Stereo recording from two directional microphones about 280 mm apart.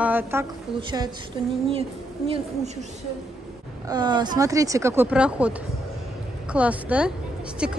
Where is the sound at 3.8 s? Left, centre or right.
Centre.